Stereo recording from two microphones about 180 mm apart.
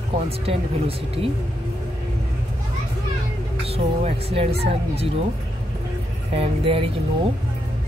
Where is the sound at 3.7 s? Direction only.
35° right (ahead or behind).